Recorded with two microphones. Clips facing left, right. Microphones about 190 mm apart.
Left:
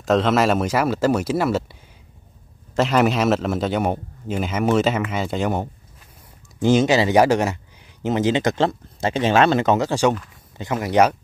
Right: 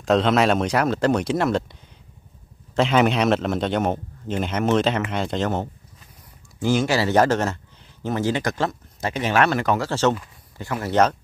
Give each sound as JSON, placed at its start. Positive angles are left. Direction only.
{"t": 0.0, "sound": "a man's voice", "side_deg": 0}